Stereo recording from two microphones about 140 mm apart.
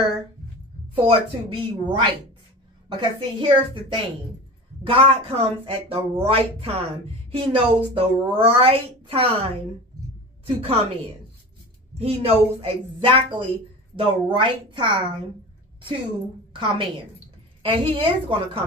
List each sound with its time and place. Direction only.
0.9 s a woman's voice: 40° right (ahead or behind)
12.0 s a woman's voice: 45° right (ahead or behind)
16.5 s a woman's voice: 35° right (ahead or behind)